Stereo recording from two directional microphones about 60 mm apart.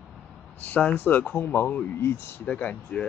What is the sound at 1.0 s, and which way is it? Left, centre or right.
Speech, left.